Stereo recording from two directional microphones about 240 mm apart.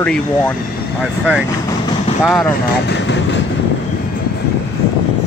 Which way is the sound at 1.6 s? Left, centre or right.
Centre.